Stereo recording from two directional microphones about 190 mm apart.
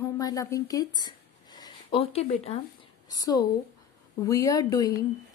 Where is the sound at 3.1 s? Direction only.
20° left (ahead or behind).